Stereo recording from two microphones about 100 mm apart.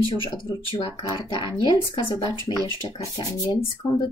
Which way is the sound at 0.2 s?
60° left (ahead or behind).